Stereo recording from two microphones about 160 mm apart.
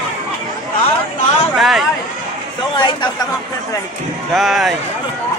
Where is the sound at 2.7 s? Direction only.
30° left (ahead or behind).